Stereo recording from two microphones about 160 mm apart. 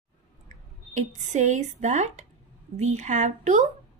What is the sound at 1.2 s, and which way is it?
A woman's voice, 50° right (ahead or behind).